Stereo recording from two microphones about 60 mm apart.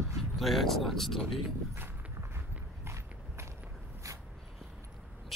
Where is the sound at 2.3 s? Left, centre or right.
Right.